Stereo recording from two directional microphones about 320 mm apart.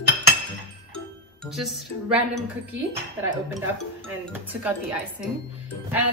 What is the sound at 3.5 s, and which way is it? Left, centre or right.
A woman's voice, centre.